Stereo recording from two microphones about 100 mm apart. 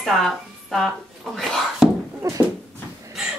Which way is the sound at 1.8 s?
5° right (ahead or behind).